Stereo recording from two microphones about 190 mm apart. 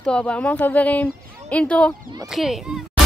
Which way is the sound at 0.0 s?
5° left (ahead or behind).